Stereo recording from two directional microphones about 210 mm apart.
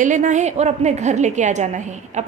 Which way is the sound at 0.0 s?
35° right (ahead or behind).